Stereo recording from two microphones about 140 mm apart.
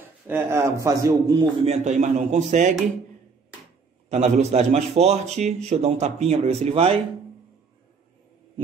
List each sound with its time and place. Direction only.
0.3 s a man's voice: 20° right (ahead or behind)
1.7 s a man's voice: 60° right (ahead or behind)
4.1 s a man's voice: 50° right (ahead or behind)